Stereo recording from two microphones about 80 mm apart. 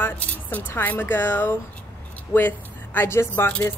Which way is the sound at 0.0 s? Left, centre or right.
Left.